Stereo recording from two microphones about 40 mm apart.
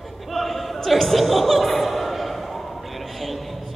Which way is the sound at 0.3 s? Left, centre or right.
Centre.